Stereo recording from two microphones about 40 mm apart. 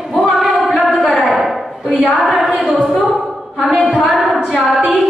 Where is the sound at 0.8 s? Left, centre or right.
Centre.